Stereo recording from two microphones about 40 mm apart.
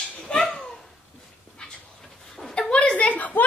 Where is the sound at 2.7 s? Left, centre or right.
Left.